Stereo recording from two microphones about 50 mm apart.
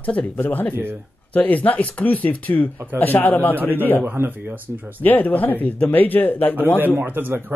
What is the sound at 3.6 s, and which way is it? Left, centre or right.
Speech, right.